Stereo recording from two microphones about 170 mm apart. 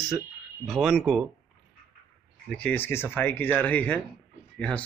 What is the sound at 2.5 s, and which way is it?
Speech, 10° left (ahead or behind).